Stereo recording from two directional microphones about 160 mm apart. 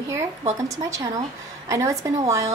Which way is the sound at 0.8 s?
20° right (ahead or behind).